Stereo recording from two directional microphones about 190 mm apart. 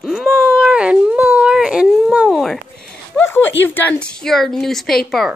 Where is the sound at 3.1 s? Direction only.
10° left (ahead or behind).